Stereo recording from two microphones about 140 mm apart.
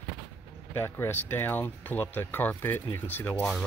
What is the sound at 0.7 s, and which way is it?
Speech, 20° left (ahead or behind).